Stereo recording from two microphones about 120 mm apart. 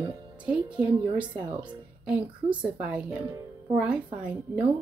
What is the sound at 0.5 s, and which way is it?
Speech, 10° right (ahead or behind).